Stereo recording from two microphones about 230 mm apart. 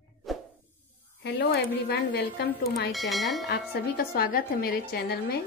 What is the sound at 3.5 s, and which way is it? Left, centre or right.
A woman's voice, left.